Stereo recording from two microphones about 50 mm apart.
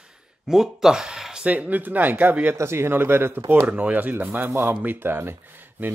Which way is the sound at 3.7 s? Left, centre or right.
Right.